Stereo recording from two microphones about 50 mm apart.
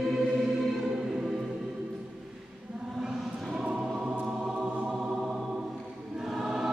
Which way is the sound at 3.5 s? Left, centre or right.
Right.